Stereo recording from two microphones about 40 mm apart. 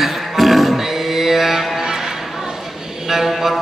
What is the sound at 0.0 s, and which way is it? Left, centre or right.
Music, centre.